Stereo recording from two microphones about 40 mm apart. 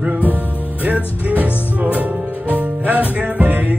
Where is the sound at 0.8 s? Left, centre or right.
Right.